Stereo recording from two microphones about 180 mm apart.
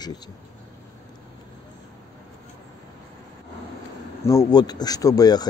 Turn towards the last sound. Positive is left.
turn(degrees=20)  # may be behind; listen again after turning